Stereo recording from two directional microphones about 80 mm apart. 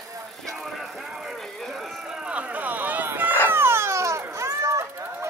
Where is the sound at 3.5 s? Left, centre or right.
Right.